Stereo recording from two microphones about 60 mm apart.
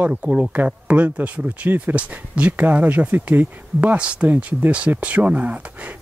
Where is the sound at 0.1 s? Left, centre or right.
Centre.